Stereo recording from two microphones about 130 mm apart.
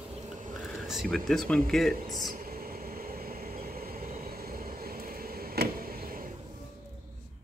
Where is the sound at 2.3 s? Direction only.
90° right.